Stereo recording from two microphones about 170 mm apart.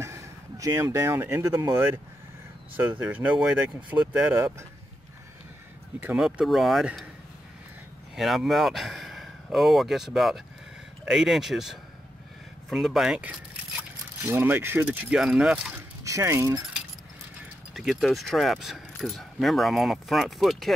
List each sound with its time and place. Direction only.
0.0 s speech: 15° right (ahead or behind)
5.9 s speech: 5° right (ahead or behind)
8.2 s speech: centre (ahead or behind)
16.0 s speech: 15° right (ahead or behind)
17.7 s speech: centre (ahead or behind)